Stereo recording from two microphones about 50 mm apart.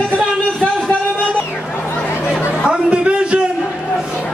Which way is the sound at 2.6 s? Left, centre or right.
Right.